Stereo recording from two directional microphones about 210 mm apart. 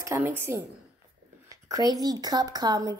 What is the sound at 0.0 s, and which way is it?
A woman's voice, 10° right (ahead or behind).